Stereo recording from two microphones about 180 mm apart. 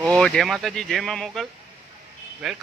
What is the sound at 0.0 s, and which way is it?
Speech, 5° left (ahead or behind).